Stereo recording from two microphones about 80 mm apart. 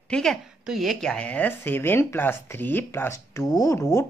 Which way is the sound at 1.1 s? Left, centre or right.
Centre.